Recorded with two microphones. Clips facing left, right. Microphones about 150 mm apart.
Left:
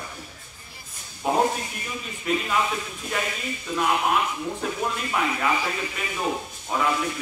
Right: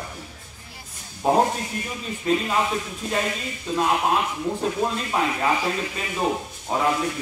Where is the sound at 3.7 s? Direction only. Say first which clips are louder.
Right 2 dB; 25° right (ahead or behind).